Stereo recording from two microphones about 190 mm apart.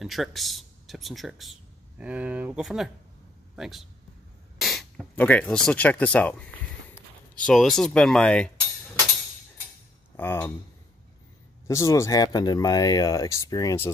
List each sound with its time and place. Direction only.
0.0 s speech: centre (ahead or behind)
7.4 s speech: centre (ahead or behind)
10.1 s speech: 10° left (ahead or behind)
11.6 s speech: 15° left (ahead or behind)